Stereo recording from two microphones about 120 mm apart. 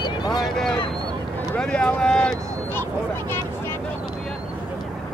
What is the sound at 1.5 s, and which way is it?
Speech, 5° left (ahead or behind).